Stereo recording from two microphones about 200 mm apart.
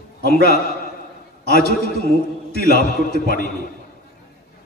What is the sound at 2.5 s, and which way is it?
Speech, 50° left (ahead or behind).